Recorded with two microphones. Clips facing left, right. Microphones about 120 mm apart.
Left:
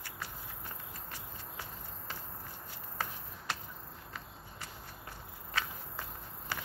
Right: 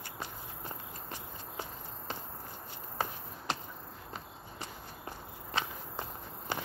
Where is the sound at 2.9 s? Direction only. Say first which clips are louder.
Right 4 dB; 20° right (ahead or behind).